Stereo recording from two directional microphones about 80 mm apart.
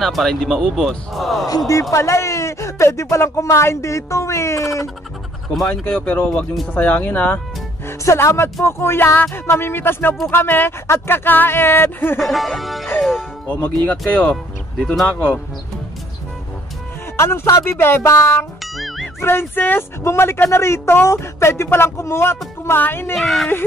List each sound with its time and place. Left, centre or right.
0.0 s speech: centre
1.7 s speech: left
5.7 s speech: centre
8.0 s speech: left
12.2 s speech: centre
13.5 s speech: left
17.3 s speech: left
17.6 s speech: left
18.6 s music: centre
19.2 s speech: left
23.1 s speech: centre